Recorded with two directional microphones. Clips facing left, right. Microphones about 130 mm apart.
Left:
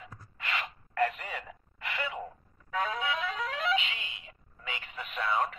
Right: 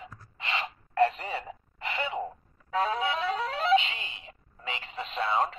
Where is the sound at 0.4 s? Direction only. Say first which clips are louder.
Right 3 dB; 25° right (ahead or behind).